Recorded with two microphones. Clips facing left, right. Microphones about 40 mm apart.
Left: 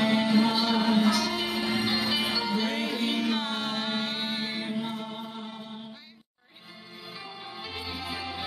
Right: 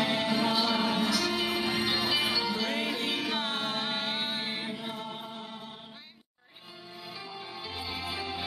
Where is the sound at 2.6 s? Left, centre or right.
Right.